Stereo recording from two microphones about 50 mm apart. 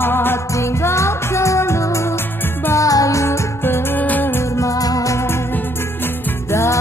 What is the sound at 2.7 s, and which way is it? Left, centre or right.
Music, left.